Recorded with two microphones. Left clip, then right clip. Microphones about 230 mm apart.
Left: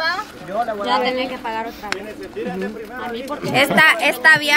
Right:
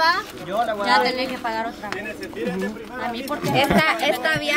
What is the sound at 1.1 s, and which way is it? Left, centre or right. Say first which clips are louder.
Speech: left 2 dB; centre.